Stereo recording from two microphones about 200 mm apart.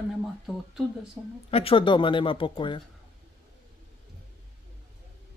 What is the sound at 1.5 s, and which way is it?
Speech, 30° left (ahead or behind).